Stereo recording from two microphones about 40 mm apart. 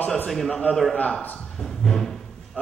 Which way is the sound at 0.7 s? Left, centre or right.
Left.